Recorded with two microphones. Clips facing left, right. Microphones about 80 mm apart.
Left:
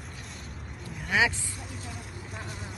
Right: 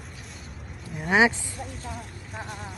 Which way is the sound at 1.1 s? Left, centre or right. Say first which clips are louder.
Right 5 dB; right.